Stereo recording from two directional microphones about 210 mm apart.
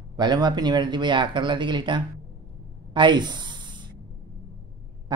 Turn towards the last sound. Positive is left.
turn(degrees=-20)  # may be behind; listen again after turning